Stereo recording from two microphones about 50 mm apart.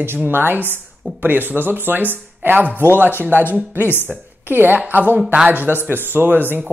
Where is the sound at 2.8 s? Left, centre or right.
Right.